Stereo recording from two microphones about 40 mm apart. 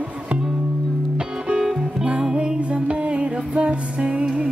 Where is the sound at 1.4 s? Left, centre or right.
Right.